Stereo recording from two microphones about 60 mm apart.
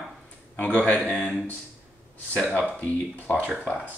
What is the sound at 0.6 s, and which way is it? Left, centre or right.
Speech, left.